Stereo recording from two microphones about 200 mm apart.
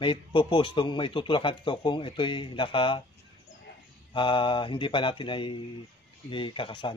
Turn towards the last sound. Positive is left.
turn(degrees=25)  # may be behind; listen again after turning